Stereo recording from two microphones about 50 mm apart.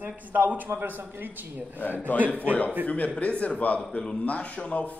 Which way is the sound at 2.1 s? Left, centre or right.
Left.